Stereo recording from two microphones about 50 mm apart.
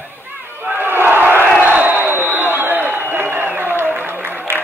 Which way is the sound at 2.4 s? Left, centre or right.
Right.